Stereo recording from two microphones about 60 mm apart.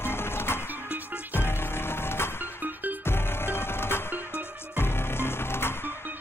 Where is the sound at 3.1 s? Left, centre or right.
Left.